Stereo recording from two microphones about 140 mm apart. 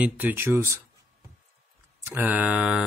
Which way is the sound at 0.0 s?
15° right (ahead or behind).